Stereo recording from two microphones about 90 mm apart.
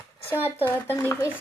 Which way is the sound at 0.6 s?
25° left (ahead or behind).